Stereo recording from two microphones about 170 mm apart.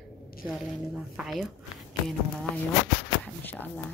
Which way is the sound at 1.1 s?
Centre (ahead or behind).